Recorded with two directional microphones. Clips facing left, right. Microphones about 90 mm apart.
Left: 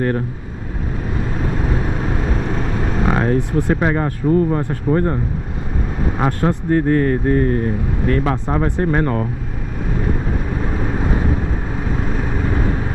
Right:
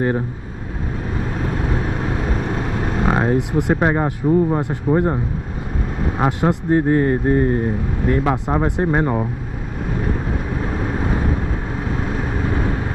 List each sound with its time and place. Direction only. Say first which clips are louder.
1.4 s vehicle: left 1 dB; 5° right (ahead or behind); by 4.1 s 20° right (ahead or behind)
4.3 s speech: left 1 dB; 10° right (ahead or behind)
8.2 s speech: even; 10° right (ahead or behind)
12.1 s vehicle: left 1 dB; 5° right (ahead or behind)